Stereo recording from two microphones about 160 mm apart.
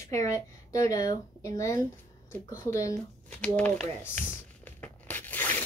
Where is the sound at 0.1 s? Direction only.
20° left (ahead or behind).